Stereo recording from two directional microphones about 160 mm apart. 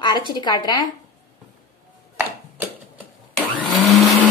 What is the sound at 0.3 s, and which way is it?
Speech, 25° left (ahead or behind).